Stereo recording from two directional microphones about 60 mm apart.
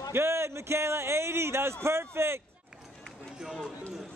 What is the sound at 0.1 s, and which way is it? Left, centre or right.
A man's voice, right.